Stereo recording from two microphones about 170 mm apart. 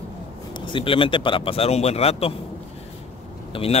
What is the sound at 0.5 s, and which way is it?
Speech, 30° left (ahead or behind).